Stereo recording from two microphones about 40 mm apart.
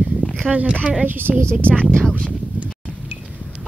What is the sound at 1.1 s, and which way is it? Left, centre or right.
Speech, right.